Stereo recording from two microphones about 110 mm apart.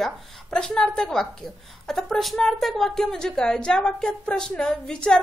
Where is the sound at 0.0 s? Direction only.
5° left (ahead or behind).